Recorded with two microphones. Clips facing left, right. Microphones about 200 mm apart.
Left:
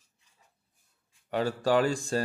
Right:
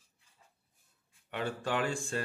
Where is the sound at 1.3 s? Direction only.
40° left (ahead or behind).